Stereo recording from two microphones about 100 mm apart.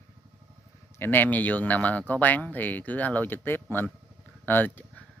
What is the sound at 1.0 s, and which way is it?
Speech, 20° left (ahead or behind).